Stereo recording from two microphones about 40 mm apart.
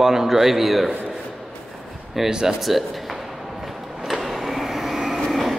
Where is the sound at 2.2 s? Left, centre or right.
Centre.